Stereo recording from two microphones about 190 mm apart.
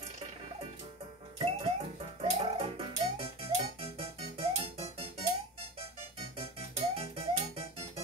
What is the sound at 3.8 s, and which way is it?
Keyboard, 30° right (ahead or behind).